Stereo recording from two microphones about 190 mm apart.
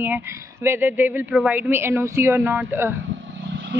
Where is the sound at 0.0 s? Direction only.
10° right (ahead or behind).